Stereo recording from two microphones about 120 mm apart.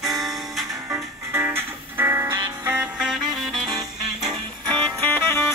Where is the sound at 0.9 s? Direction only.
20° right (ahead or behind).